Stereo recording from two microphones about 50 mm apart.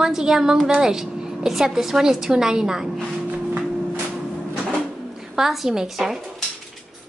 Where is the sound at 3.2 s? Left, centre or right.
Right.